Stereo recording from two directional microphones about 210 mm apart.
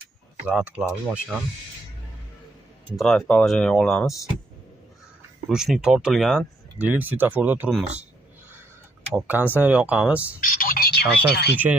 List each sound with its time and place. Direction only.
0.5 s speech: 5° right (ahead or behind)
3.0 s speech: centre (ahead or behind)
5.5 s speech: 5° right (ahead or behind)
9.1 s speech: 10° right (ahead or behind)
10.4 s speech: 40° left (ahead or behind)